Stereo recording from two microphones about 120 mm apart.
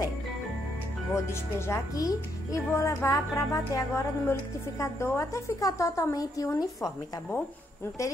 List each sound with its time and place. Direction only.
1.3 s speech: 25° left (ahead or behind)
8.0 s speech: 25° left (ahead or behind)